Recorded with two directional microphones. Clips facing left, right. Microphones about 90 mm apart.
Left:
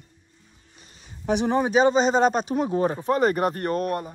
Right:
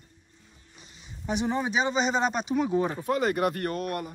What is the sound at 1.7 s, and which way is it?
Speech, 40° left (ahead or behind).